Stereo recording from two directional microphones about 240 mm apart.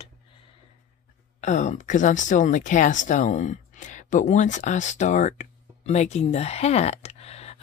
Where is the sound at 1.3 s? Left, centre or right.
Left.